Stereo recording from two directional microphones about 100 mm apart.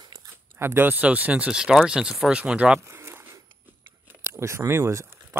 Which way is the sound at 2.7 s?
25° right (ahead or behind).